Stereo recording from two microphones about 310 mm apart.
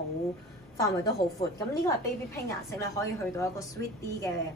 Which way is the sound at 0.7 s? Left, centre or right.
Centre.